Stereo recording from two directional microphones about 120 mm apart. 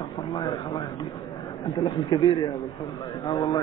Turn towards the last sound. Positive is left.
turn(degrees=40)  # may be behind; listen again after turning